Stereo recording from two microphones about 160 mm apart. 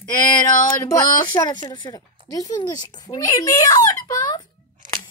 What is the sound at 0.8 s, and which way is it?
A child's voice, 25° left (ahead or behind).